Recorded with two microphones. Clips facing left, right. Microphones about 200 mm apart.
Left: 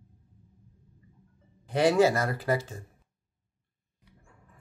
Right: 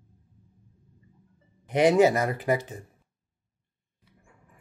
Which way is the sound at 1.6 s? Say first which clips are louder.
Right 3 dB; 20° right (ahead or behind).